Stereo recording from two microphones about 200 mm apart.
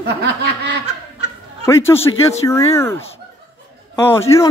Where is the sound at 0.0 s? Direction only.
55° right (ahead or behind).